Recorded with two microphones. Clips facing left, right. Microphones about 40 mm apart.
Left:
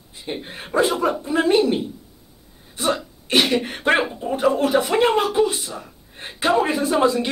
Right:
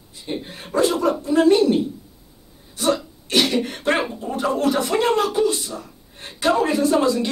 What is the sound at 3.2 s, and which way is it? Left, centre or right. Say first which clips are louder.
Speech: left 1 dB; centre.